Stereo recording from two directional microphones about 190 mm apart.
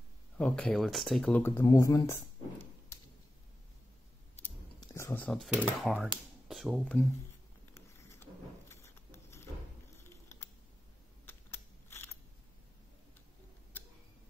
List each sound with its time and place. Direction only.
0.4 s speech: 5° left (ahead or behind)
1.5 s speech: 20° left (ahead or behind)
4.9 s speech: 10° left (ahead or behind)
7.7 s a sound: 15° left (ahead or behind)
11.2 s computer keyboard: 10° left (ahead or behind)